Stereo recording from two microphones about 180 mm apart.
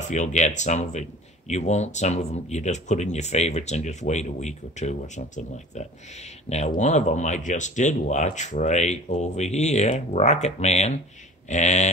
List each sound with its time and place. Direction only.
0.0 s speech: 40° left (ahead or behind)